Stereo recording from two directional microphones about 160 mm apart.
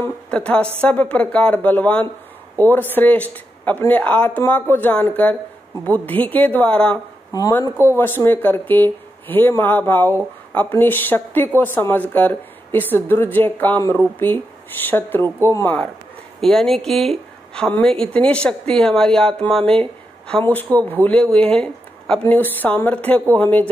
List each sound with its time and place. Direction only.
0.0 s speech: 10° left (ahead or behind)
7.3 s speech: 25° left (ahead or behind)